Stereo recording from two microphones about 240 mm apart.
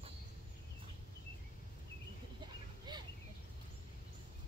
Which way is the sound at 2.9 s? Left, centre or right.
Centre.